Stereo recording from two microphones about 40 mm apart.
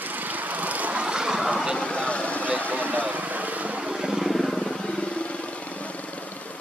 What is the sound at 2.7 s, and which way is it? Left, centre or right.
Vehicle, right.